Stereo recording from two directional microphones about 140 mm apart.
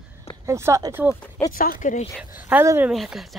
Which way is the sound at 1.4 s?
15° left (ahead or behind).